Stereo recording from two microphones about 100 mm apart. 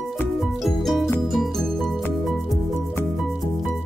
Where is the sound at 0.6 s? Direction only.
Centre (ahead or behind).